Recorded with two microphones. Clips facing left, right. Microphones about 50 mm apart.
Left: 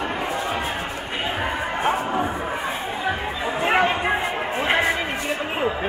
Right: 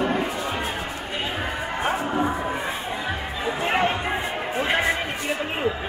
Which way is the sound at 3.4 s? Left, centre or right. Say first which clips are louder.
Left 3 dB; left.